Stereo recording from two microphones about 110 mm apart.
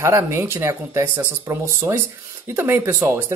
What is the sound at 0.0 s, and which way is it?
Speech, 25° right (ahead or behind).